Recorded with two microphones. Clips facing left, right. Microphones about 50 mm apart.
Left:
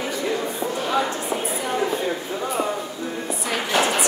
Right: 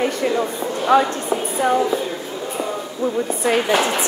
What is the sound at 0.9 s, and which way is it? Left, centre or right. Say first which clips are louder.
Speech: right 9 dB; right.